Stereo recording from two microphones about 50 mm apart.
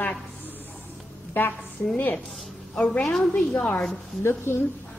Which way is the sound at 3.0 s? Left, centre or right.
Centre.